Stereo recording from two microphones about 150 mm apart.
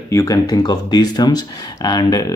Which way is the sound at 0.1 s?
20° left (ahead or behind).